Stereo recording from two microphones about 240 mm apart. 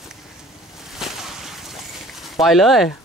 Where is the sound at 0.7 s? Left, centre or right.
Centre.